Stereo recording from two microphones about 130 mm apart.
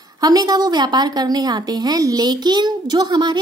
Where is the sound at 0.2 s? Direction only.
30° right (ahead or behind).